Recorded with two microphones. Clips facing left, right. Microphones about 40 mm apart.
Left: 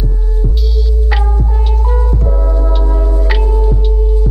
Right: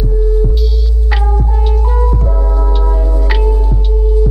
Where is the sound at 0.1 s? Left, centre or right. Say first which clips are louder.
Right 7 dB; centre.